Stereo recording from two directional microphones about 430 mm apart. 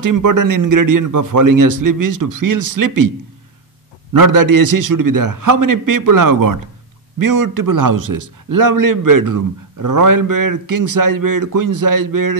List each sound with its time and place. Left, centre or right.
0.0 s a man's voice: right
4.1 s a man's voice: right